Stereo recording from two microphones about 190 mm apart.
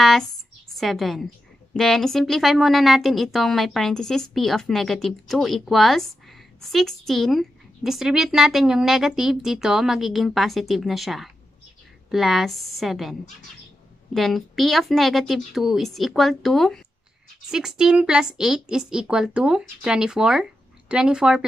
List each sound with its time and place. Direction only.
0.7 s a woman's voice: centre (ahead or behind)
14.1 s a woman's voice: centre (ahead or behind)